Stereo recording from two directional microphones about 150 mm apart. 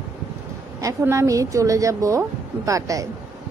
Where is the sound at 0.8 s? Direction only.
20° right (ahead or behind).